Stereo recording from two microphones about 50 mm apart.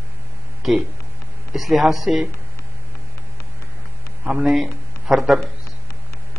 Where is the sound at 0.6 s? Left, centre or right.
Centre.